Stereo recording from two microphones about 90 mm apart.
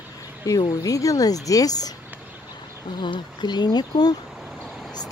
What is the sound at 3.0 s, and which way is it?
Speech, 55° left (ahead or behind).